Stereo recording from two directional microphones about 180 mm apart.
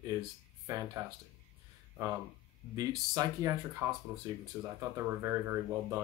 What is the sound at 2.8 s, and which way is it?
Speech, 20° right (ahead or behind).